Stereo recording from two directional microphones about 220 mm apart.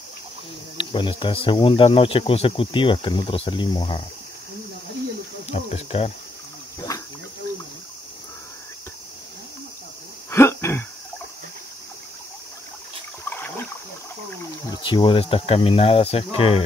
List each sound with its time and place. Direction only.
0.7 s speech: 20° left (ahead or behind)
5.5 s speech: 25° left (ahead or behind)
6.9 s a sound: 15° left (ahead or behind)
10.3 s throat clearing: 10° left (ahead or behind)
13.2 s a sound: 10° left (ahead or behind)
14.8 s speech: 25° left (ahead or behind)